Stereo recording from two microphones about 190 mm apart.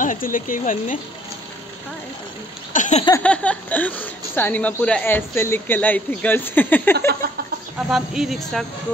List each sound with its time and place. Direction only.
0.0 s speech: 45° left (ahead or behind)
2.7 s a sound: 40° left (ahead or behind)
3.2 s speech: 5° left (ahead or behind)
7.9 s speech: centre (ahead or behind)